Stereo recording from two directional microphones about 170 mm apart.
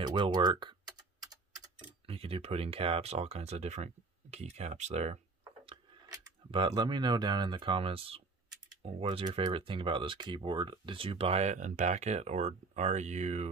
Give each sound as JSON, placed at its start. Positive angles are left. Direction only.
{"t": 0.0, "sound": "typing", "side_deg": -25}
{"t": 2.0, "sound": "speech", "side_deg": -35}
{"t": 5.7, "sound": "a sound", "side_deg": -20}
{"t": 6.5, "sound": "speech", "side_deg": -25}